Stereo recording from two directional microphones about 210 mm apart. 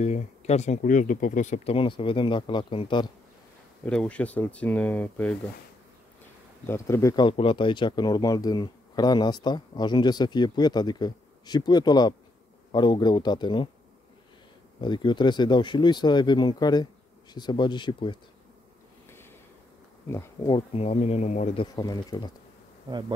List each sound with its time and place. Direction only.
0.0 s speech: 30° left (ahead or behind)
3.8 s speech: 5° left (ahead or behind)
6.6 s speech: 10° left (ahead or behind)
14.8 s speech: 20° left (ahead or behind)
20.4 s speech: 25° left (ahead or behind)
21.7 s speech: 20° left (ahead or behind)
22.8 s bee: 20° right (ahead or behind)